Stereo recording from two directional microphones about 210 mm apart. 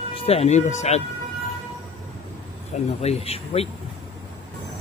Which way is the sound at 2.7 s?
30° left (ahead or behind).